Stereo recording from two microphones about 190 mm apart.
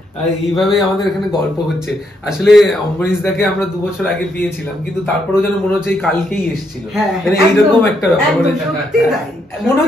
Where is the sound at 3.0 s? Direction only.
10° left (ahead or behind).